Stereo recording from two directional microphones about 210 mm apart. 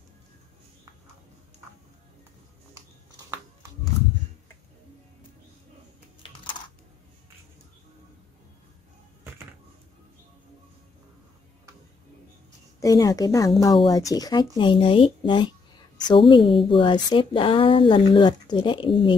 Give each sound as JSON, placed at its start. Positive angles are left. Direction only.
{"t": 12.8, "sound": "speech", "side_deg": 15}